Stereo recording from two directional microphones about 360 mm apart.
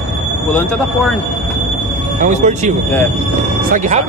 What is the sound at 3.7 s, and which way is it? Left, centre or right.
Speech, right.